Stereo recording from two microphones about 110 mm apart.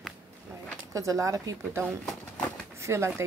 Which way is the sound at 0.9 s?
30° right (ahead or behind).